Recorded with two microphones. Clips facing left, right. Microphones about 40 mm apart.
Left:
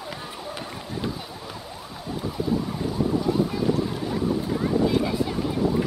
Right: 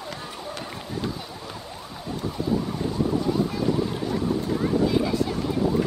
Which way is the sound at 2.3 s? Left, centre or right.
Centre.